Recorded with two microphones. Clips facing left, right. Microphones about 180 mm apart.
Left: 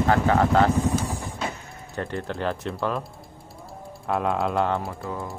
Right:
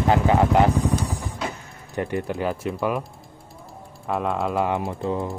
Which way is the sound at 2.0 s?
10° right (ahead or behind).